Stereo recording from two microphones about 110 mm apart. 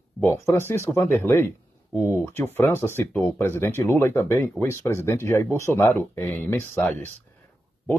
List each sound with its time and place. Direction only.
0.2 s speech: 20° left (ahead or behind)